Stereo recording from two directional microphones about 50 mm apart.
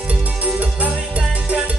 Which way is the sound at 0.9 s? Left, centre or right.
Right.